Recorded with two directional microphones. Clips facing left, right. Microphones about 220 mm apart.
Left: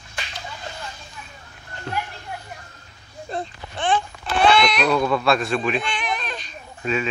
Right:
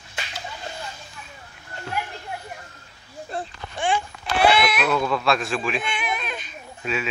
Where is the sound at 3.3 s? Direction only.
10° right (ahead or behind).